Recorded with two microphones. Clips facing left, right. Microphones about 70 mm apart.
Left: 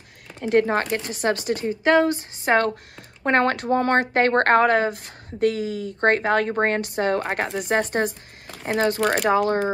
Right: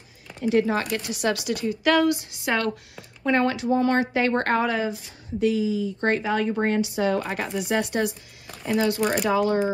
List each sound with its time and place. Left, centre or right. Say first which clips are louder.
0.4 s speech: left 2 dB; left